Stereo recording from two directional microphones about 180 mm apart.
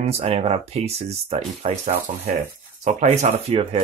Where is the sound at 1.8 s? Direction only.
50° right (ahead or behind).